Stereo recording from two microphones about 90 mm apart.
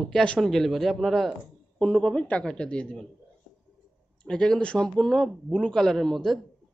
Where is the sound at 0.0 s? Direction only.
10° left (ahead or behind).